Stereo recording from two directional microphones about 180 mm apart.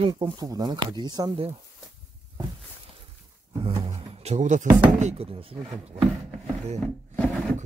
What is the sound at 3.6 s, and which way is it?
Speech, 35° right (ahead or behind).